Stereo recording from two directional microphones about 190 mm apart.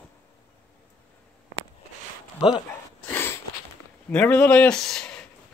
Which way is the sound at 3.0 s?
10° left (ahead or behind).